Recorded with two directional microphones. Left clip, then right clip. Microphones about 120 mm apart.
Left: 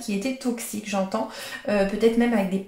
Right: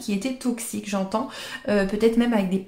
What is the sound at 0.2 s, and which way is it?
Speech, 45° right (ahead or behind).